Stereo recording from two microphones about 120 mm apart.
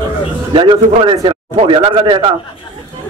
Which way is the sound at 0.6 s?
45° right (ahead or behind).